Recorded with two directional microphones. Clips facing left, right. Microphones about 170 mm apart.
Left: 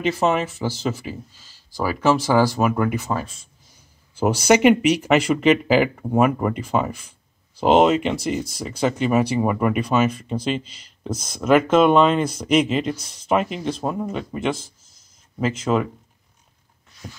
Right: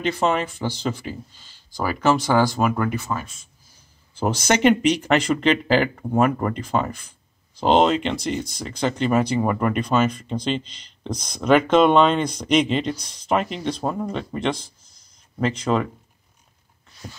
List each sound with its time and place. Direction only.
0.0 s speech: 5° left (ahead or behind)
3.1 s speech: 30° left (ahead or behind)
4.1 s speech: 10° left (ahead or behind)